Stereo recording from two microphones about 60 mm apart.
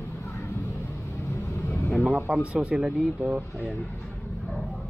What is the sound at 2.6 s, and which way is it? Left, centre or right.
Speech, centre.